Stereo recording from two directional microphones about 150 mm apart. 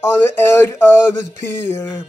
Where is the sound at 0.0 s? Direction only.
20° left (ahead or behind).